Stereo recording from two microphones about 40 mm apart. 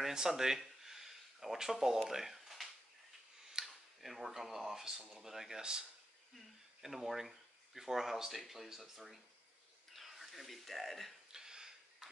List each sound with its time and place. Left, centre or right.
0.0 s speech: centre
0.6 s a sound: centre
3.6 s speech: centre
5.6 s speech: right
6.3 s speech: centre
11.3 s a sound: centre